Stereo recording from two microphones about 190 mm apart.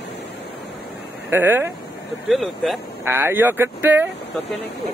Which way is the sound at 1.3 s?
10° right (ahead or behind).